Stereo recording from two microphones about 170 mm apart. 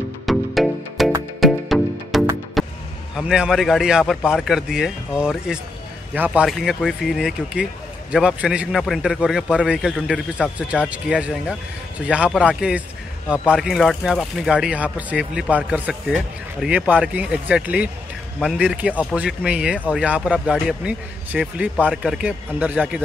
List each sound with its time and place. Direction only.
0.3 s music: centre (ahead or behind)
3.2 s a man's voice: 5° right (ahead or behind)